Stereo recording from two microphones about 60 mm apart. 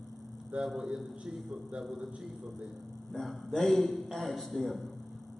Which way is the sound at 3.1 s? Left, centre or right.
Centre.